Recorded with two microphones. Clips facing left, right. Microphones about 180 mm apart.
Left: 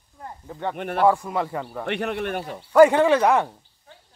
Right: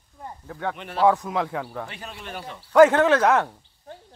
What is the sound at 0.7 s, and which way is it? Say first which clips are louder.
Speech: left 6 dB; 55° left (ahead or behind).